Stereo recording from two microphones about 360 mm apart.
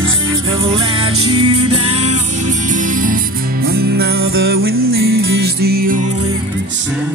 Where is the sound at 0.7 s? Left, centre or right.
Centre.